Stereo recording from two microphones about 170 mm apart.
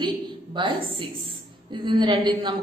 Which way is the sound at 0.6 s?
30° right (ahead or behind).